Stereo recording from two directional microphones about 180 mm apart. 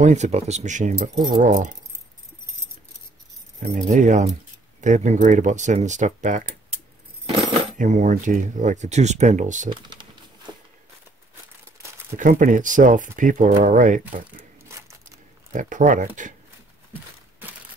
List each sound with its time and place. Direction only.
0.0 s speech: 40° right (ahead or behind)
3.6 s speech: 45° right (ahead or behind)
7.2 s coin: 30° right (ahead or behind)
7.7 s speech: 45° right (ahead or behind)
12.2 s speech: 45° right (ahead or behind)
14.7 s a sound: 15° right (ahead or behind)
15.5 s speech: 45° right (ahead or behind)